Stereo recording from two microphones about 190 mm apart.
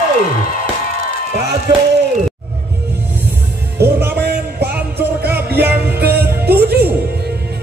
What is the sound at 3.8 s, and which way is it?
Music, 55° right (ahead or behind).